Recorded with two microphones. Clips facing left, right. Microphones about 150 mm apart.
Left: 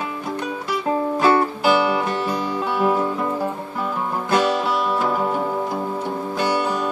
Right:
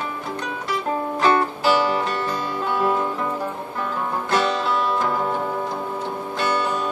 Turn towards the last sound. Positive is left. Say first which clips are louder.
# left 2 dB
turn(degrees=10)  # may be behind; listen again after turning